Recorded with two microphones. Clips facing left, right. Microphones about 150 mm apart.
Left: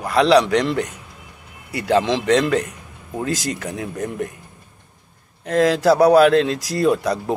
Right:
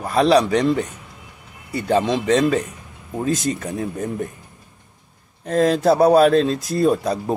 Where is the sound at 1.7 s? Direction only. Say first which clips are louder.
Left 1 dB; 80° left.